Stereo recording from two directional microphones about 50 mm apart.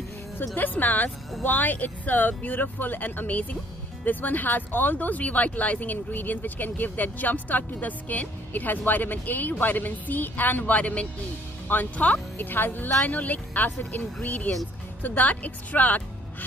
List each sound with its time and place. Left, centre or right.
0.6 s a woman's voice: left